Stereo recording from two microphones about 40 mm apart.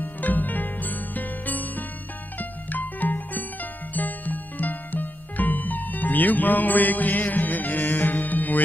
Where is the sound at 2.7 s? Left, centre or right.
Left.